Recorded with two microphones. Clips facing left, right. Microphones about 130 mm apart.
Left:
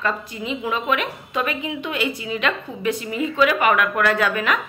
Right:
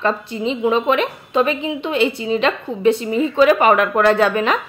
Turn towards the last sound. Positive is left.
turn(degrees=-30)  # may be behind; listen again after turning